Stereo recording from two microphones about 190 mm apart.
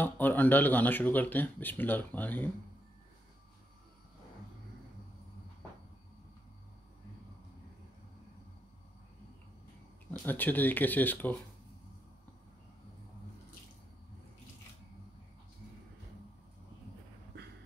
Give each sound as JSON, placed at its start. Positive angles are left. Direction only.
{"t": 0.0, "sound": "speech", "side_deg": 10}
{"t": 10.2, "sound": "speech", "side_deg": 10}